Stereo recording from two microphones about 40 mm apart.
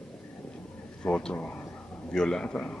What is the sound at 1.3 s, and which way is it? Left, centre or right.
Speech, left.